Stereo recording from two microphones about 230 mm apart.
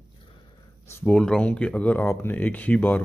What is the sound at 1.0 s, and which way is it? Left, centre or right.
Speech, centre.